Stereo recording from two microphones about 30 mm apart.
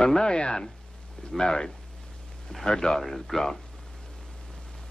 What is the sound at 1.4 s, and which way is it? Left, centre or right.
Speech, left.